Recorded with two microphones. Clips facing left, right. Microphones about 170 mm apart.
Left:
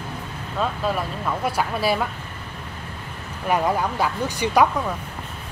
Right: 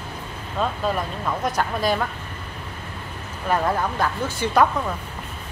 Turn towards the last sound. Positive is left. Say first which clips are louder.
# left 1 dB
turn(degrees=15)  # may be behind; listen again after turning